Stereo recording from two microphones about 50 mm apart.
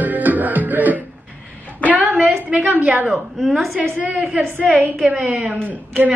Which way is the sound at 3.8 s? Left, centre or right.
Right.